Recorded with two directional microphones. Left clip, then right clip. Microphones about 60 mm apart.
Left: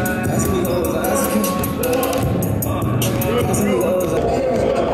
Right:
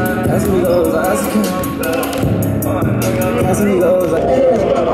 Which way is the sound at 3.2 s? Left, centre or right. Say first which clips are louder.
Right 4 dB; centre.